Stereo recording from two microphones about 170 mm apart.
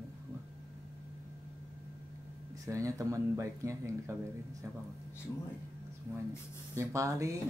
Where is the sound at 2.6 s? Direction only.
20° right (ahead or behind).